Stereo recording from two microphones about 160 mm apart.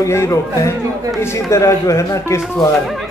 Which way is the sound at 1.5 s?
20° left (ahead or behind).